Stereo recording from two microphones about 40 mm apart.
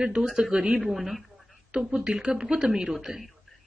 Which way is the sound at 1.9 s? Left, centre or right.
Right.